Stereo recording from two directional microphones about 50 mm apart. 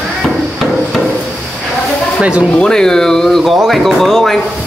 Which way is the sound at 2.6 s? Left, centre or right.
Centre.